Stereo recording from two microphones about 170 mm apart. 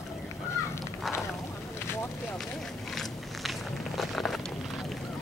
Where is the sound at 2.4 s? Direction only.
Centre (ahead or behind).